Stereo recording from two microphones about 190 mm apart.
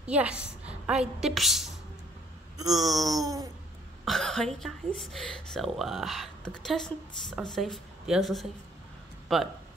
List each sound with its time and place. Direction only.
0.0 s a woman's voice: 5° right (ahead or behind)
2.8 s speech: 20° right (ahead or behind)
4.0 s speech: centre (ahead or behind)